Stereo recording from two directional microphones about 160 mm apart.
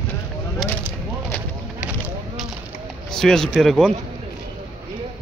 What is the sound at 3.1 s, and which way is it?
Speech, 5° left (ahead or behind).